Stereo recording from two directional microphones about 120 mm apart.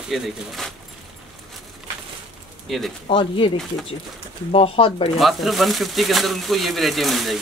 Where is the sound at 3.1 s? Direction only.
50° left (ahead or behind).